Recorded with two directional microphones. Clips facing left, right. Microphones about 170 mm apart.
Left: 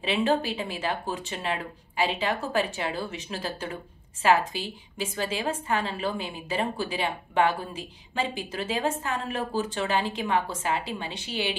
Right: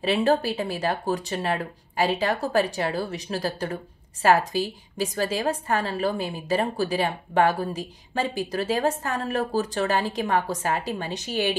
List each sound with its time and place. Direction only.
0.0 s a woman's voice: 40° right (ahead or behind)